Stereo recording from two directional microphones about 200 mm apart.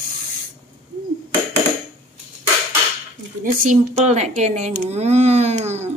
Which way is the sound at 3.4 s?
40° right (ahead or behind).